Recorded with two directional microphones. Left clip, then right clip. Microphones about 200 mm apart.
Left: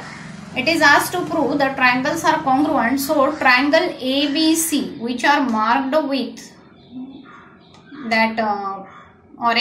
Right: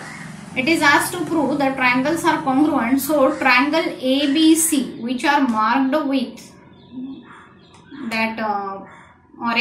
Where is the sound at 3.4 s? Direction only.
50° left (ahead or behind).